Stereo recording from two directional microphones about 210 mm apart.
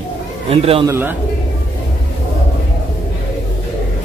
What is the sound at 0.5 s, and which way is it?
Speech, 25° right (ahead or behind).